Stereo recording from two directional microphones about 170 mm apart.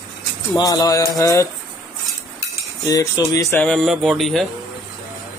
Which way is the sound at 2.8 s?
20° left (ahead or behind).